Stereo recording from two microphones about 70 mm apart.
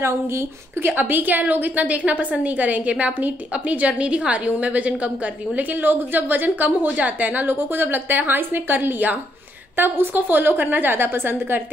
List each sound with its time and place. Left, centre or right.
0.0 s a woman's voice: right